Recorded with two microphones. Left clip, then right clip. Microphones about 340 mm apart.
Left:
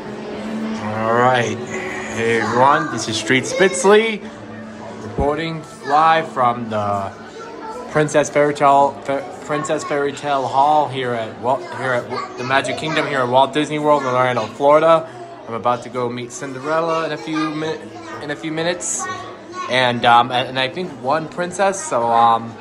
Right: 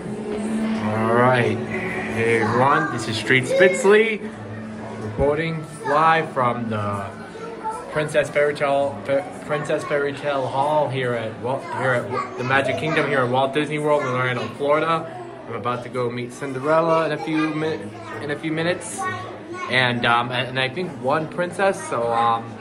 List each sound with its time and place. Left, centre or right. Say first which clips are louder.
0.8 s a sound: left 3 dB; centre
2.1 s a man's voice: left 3 dB; centre
5.2 s a man's voice: left 1 dB; centre
8.0 s a man's voice: left 4 dB; centre